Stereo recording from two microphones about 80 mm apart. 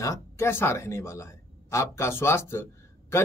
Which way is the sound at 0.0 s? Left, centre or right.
Left.